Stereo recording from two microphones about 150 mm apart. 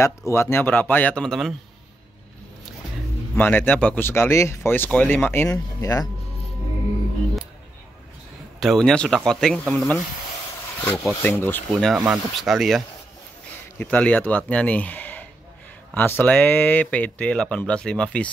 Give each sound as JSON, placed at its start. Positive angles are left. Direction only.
{"t": 0.0, "sound": "speech", "side_deg": 20}
{"t": 3.3, "sound": "speech", "side_deg": 10}
{"t": 8.5, "sound": "speech", "side_deg": 0}
{"t": 11.2, "sound": "speech", "side_deg": 15}
{"t": 11.8, "sound": "speech", "side_deg": 0}